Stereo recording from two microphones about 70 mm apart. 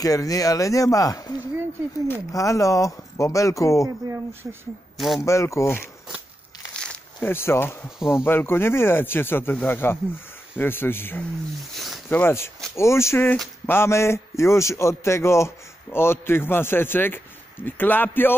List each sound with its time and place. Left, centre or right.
0.0 s speech: left
2.3 s speech: left
4.1 s speech: right
4.9 s speech: centre
5.2 s speech: left
6.8 s a sound: centre
7.2 s a man's voice: left
8.0 s speech: centre
8.3 s a man's voice: left
11.7 s a sound: centre
12.1 s a man's voice: left
12.7 s a man's voice: left